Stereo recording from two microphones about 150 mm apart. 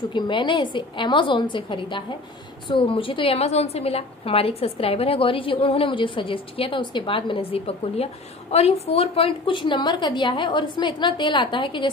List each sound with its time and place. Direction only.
0.1 s a woman's voice: 30° left (ahead or behind)